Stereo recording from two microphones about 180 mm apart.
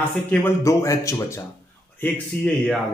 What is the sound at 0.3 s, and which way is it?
A man's voice, 15° left (ahead or behind).